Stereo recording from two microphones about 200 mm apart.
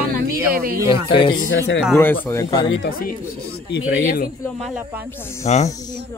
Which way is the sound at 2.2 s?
15° left (ahead or behind).